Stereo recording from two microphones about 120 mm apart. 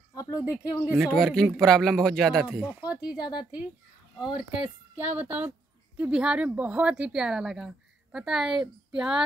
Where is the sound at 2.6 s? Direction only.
10° right (ahead or behind).